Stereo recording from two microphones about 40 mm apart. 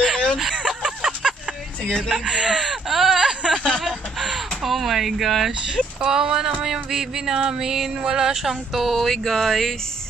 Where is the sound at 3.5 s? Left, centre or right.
Centre.